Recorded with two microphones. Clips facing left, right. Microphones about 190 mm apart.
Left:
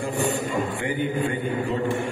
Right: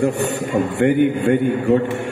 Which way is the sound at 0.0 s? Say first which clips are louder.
Right 6 dB; 70° right (ahead or behind).